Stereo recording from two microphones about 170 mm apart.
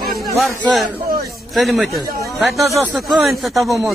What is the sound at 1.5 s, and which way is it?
Speech, centre (ahead or behind).